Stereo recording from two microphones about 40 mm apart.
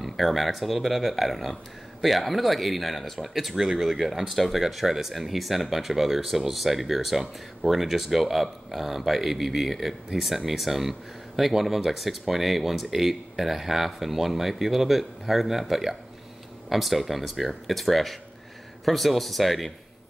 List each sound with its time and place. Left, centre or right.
0.0 s speech: centre